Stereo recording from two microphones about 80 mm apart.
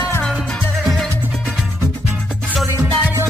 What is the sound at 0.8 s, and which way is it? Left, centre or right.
Music, centre.